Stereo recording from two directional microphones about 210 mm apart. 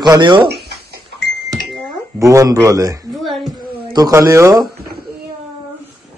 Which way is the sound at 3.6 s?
20° right (ahead or behind).